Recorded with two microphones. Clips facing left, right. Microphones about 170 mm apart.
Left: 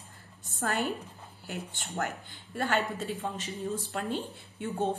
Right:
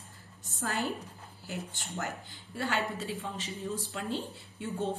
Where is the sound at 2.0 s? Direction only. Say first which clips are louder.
Left 4 dB; 55° left (ahead or behind).